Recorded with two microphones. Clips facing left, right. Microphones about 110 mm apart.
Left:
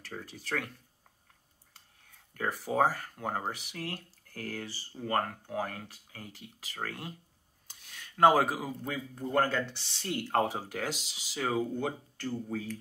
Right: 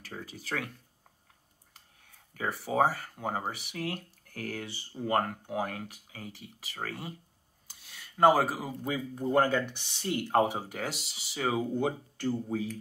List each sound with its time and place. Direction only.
0.0 s speech: 5° right (ahead or behind)
2.3 s speech: 5° right (ahead or behind)
9.1 s speech: 20° right (ahead or behind)
11.8 s speech: 20° right (ahead or behind)